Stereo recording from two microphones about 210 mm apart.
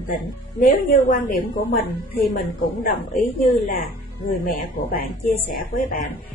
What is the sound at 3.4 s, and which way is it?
Speech, 40° left (ahead or behind).